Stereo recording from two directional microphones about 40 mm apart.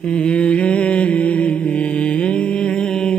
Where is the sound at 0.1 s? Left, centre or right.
Left.